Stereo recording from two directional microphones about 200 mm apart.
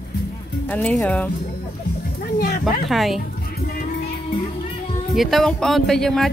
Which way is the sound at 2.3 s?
45° left (ahead or behind).